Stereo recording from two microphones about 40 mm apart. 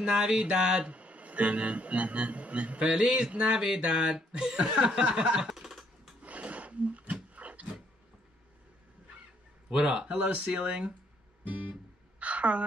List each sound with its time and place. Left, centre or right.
0.0 s chuckle: right
0.7 s a man's voice: right
3.0 s chuckle: right
3.4 s a sound: centre
4.6 s chuckle: right
5.5 s typing: centre
6.2 s roaring cats: right
9.7 s chuckle: right
11.4 s a man's voice: right
12.2 s a sound: right